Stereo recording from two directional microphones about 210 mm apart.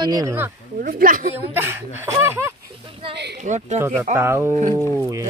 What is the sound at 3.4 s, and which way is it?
Speech, 35° right (ahead or behind).